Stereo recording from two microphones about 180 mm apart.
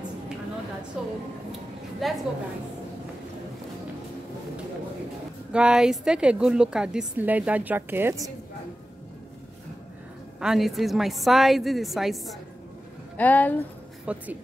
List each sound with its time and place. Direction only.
1.0 s a woman's voice: 5° right (ahead or behind)
5.5 s a woman's voice: 5° right (ahead or behind)
10.4 s a woman's voice: centre (ahead or behind)
14.1 s a woman's voice: 5° right (ahead or behind)